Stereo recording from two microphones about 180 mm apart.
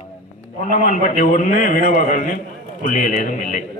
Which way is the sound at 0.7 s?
40° left (ahead or behind).